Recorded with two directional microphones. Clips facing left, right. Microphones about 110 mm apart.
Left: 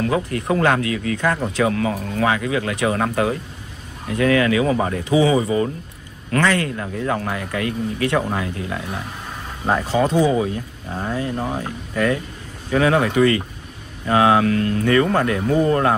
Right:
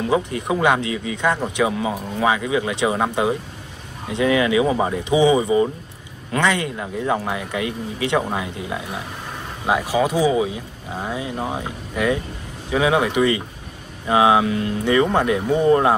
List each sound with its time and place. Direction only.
0.0 s speech: 20° right (ahead or behind)